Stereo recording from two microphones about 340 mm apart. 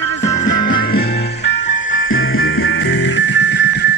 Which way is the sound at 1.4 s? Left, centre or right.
Left.